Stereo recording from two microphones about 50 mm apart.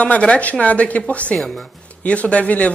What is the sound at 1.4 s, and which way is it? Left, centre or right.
Speech, centre.